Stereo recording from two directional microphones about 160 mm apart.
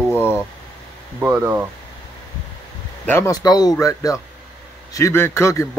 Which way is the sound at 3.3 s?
25° left (ahead or behind).